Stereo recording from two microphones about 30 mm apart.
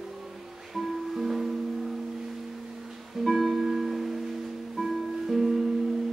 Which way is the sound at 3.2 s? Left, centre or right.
Centre.